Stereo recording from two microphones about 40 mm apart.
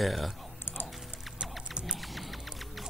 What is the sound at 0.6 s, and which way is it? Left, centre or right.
Typing, left.